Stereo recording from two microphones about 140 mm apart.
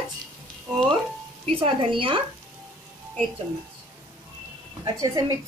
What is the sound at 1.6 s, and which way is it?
Speech, 40° right (ahead or behind).